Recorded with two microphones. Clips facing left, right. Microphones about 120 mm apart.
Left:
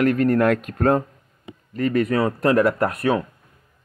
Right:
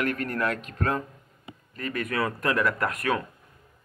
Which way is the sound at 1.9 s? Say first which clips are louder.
Left 7 dB; 30° left (ahead or behind).